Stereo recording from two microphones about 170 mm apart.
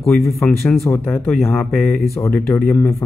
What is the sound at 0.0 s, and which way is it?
Speech, centre (ahead or behind).